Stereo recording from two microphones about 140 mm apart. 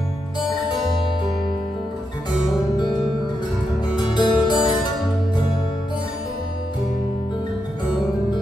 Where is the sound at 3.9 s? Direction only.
30° left (ahead or behind).